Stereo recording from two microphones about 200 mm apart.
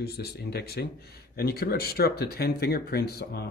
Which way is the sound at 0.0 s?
50° left (ahead or behind).